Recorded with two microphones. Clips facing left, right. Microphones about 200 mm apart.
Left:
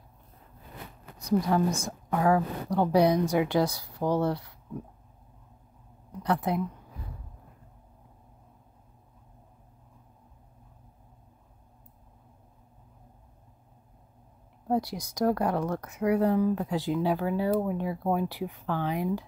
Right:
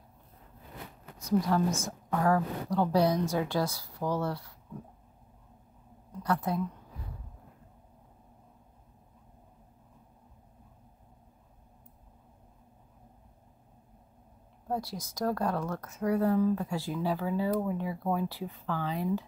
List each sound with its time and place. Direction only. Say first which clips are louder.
1.2 s a woman's voice: left 2 dB; 15° left (ahead or behind)
6.2 s a woman's voice: left 3 dB; 20° left (ahead or behind)
14.7 s a woman's voice: left 6 dB; 15° left (ahead or behind)